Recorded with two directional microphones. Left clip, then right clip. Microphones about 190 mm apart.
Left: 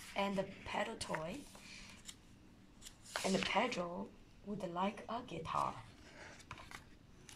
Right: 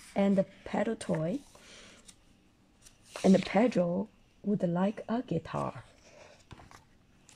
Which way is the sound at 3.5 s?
35° right (ahead or behind).